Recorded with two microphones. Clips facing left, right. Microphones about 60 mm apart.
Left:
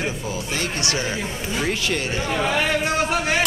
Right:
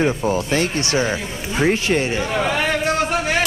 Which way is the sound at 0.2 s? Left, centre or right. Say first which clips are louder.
Right 8 dB; right.